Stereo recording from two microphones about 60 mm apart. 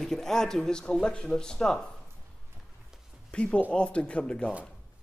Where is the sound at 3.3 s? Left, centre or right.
Centre.